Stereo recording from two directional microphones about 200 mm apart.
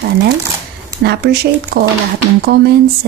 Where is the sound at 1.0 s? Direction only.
55° right (ahead or behind).